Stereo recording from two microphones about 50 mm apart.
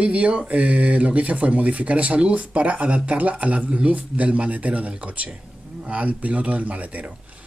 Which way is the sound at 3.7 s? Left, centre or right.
Centre.